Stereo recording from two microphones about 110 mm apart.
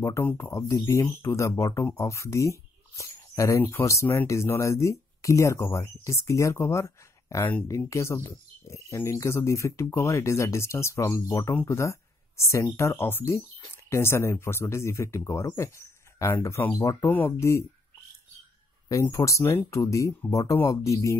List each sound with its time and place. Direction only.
0.2 s speech: 20° left (ahead or behind)
18.9 s speech: 30° left (ahead or behind)